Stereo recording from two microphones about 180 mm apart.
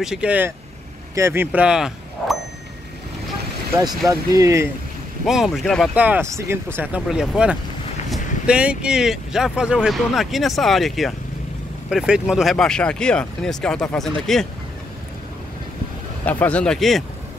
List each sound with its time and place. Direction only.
0.0 s speech: 5° right (ahead or behind)
4.1 s speech: 15° right (ahead or behind)
5.2 s speech: centre (ahead or behind)
16.3 s speech: 10° left (ahead or behind)